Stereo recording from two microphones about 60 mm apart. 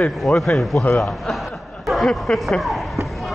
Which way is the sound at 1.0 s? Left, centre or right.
Centre.